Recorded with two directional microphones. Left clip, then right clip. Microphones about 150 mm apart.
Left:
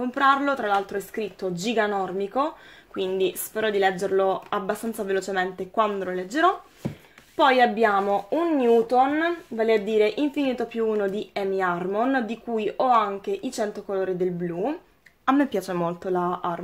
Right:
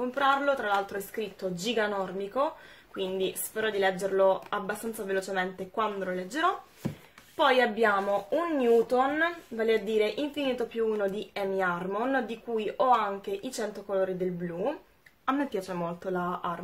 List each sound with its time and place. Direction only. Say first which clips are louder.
0.1 s speech: left 5 dB; 50° left (ahead or behind)
15.2 s speech: left 7 dB; 60° left (ahead or behind)